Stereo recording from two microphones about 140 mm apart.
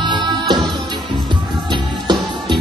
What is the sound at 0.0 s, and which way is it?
Music, 35° right (ahead or behind).